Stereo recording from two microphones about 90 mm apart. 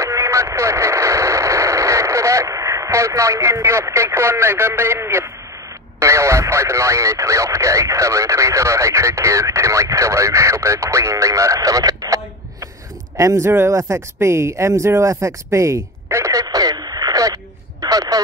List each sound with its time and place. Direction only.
0.0 s radio: 35° right (ahead or behind)
5.9 s speech: 30° right (ahead or behind)
13.2 s speech: 35° right (ahead or behind)
17.8 s a sound: 45° right (ahead or behind)